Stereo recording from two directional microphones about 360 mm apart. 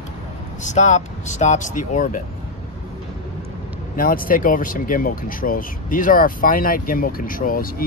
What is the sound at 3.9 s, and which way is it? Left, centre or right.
Speech, left.